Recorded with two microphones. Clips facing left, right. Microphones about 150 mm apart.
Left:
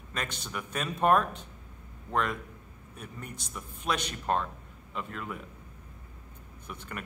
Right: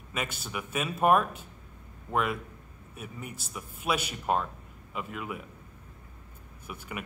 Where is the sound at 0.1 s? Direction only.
5° right (ahead or behind).